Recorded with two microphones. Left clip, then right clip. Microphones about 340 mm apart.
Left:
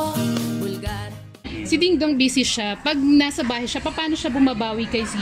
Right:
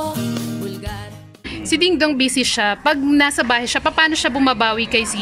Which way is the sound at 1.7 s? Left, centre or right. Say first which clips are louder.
Right 3 dB; right.